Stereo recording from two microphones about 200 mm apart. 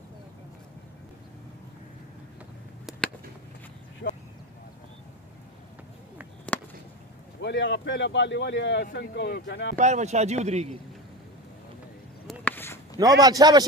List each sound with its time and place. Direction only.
2.9 s a sound: centre (ahead or behind)
6.5 s chop: 5° left (ahead or behind)
7.4 s a man's voice: 60° left (ahead or behind)
9.8 s speech: 35° right (ahead or behind)
12.3 s a sound: 10° left (ahead or behind)
13.2 s a man's voice: 20° right (ahead or behind)